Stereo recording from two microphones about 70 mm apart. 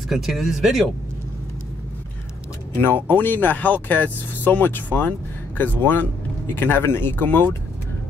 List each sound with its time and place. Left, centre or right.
0.1 s speech: centre
2.7 s speech: left